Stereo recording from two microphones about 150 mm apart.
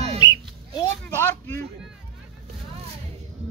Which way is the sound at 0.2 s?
25° left (ahead or behind).